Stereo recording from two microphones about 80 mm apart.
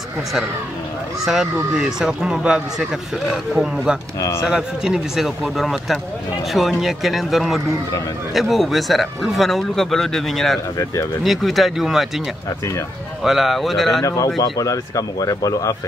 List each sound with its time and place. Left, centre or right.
1.2 s speech: centre
13.2 s speech: centre
14.0 s speech: left